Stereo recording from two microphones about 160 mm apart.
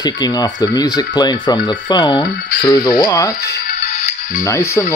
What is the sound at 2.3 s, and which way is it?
Speech, 80° left.